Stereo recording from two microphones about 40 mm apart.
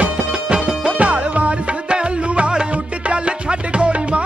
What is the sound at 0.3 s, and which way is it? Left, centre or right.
Music, right.